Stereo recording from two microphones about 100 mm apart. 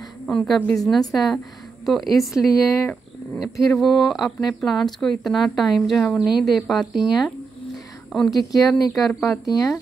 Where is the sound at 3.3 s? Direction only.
Centre (ahead or behind).